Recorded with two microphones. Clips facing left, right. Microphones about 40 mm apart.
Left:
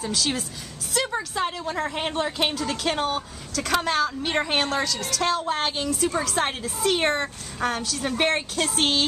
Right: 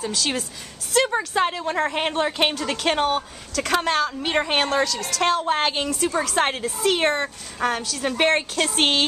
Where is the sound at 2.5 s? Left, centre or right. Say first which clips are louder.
Right 3 dB; right.